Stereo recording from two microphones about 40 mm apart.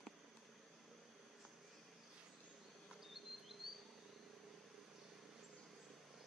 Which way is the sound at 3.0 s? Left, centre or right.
Centre.